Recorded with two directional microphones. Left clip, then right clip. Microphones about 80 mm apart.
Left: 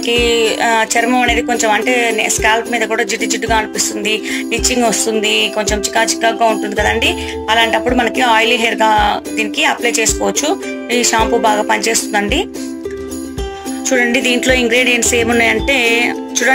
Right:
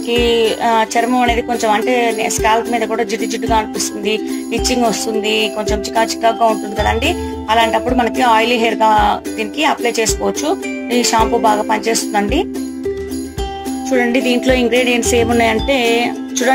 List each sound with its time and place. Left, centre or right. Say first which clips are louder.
0.1 s speech: even; right
13.8 s speech: left 2 dB; right